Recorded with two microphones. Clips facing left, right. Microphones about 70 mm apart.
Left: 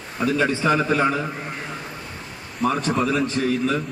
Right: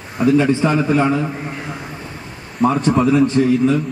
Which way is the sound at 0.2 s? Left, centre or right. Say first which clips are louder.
Right 6 dB; right.